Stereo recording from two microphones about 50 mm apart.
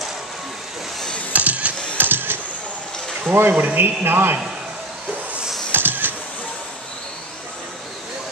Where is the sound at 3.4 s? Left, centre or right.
Right.